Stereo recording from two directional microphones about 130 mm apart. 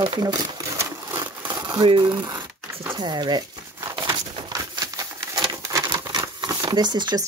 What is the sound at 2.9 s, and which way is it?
Crumpling, 35° right (ahead or behind).